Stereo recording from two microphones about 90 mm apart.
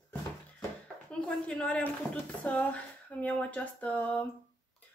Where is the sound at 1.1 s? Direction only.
10° left (ahead or behind).